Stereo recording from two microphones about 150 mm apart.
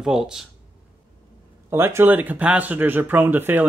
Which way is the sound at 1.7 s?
15° right (ahead or behind).